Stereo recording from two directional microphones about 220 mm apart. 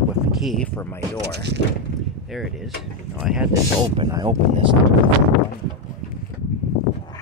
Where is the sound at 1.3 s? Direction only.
50° right (ahead or behind).